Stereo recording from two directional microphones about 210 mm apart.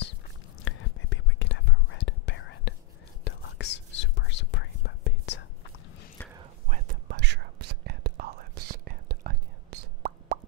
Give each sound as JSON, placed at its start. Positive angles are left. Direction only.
{"t": 0.7, "sound": "whispering", "side_deg": 60}
{"t": 6.2, "sound": "whispering", "side_deg": 10}
{"t": 6.7, "sound": "whispering", "side_deg": -45}